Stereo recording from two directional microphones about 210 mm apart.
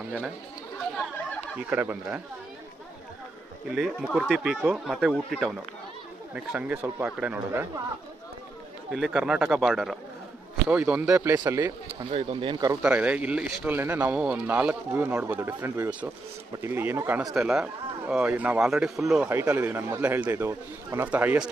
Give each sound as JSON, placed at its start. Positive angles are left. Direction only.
{"t": 1.7, "sound": "speech", "side_deg": -10}
{"t": 3.7, "sound": "speech", "side_deg": 0}
{"t": 8.9, "sound": "speech", "side_deg": 0}
{"t": 12.0, "sound": "speech", "side_deg": -25}
{"t": 12.8, "sound": "speech", "side_deg": -5}